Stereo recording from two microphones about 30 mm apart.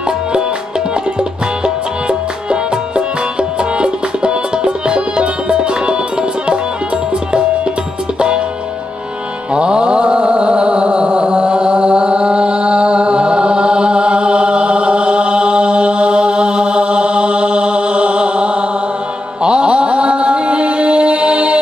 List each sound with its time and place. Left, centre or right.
1.6 s music: right
9.5 s music: right
19.4 s mantra: right